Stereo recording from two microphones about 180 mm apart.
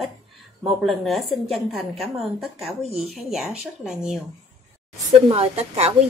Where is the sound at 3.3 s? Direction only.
5° right (ahead or behind).